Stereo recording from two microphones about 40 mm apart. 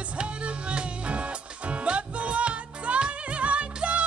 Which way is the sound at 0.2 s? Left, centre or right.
Right.